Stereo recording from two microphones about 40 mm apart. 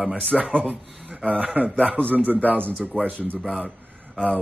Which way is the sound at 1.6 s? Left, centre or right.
Left.